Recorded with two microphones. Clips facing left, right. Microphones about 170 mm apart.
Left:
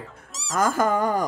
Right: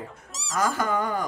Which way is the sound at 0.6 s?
45° left (ahead or behind).